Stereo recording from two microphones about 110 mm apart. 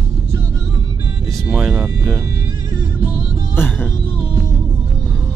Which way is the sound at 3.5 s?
20° left (ahead or behind).